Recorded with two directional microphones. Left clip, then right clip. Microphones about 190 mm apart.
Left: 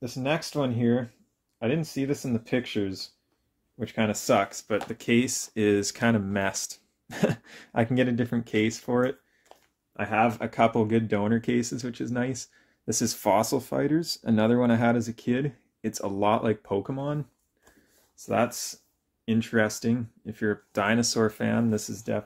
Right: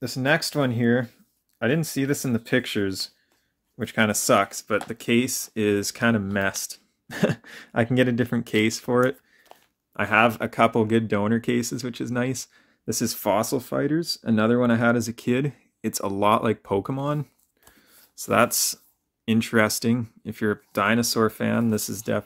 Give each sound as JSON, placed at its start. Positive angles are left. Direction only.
{"t": 0.0, "sound": "speech", "side_deg": -35}